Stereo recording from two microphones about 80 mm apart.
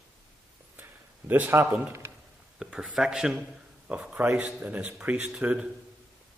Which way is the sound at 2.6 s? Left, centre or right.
Centre.